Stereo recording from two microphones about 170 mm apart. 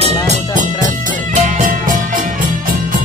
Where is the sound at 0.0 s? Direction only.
40° right (ahead or behind).